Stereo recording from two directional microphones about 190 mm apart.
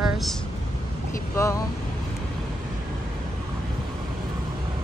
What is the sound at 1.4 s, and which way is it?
Speech, 15° left (ahead or behind).